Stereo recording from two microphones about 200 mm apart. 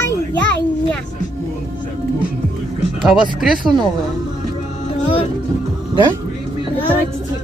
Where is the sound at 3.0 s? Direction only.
Centre (ahead or behind).